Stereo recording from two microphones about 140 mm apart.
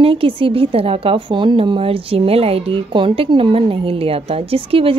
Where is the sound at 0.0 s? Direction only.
40° right (ahead or behind).